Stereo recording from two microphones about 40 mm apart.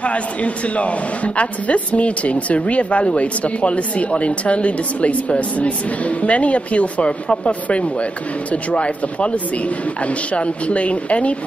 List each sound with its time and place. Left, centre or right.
0.0 s a man's voice: left